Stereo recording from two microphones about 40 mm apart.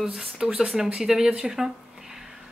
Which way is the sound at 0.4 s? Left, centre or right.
Centre.